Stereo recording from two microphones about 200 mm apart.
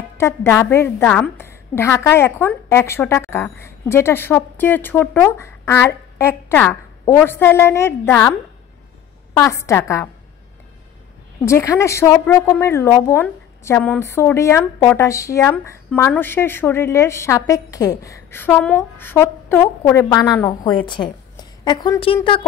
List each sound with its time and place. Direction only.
0.2 s a woman's voice: 15° left (ahead or behind)
11.4 s a woman's voice: 15° left (ahead or behind)